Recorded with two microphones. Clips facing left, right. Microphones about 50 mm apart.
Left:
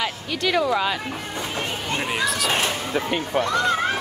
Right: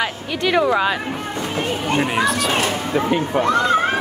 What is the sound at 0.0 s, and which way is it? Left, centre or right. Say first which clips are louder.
Speech: right 3 dB; right.